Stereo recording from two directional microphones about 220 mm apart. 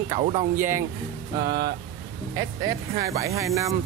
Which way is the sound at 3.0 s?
15° right (ahead or behind).